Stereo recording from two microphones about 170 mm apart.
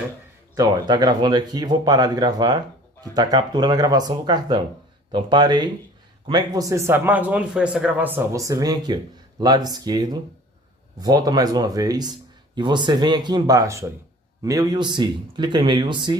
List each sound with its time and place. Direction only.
0.6 s speech: 20° right (ahead or behind)